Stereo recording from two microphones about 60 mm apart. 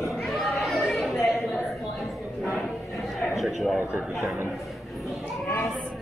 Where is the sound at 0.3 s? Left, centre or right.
Centre.